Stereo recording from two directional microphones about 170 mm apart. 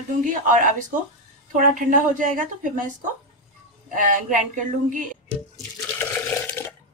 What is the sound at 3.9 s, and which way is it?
A woman's voice, 50° right (ahead or behind).